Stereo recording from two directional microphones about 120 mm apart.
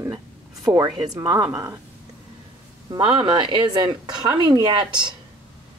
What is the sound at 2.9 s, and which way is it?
Speech, 40° right (ahead or behind).